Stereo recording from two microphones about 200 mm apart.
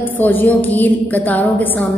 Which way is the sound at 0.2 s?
10° left (ahead or behind).